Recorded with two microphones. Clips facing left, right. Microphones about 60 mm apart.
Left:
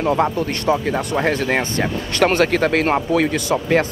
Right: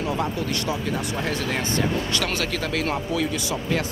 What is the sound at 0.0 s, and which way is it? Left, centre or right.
Speech, left.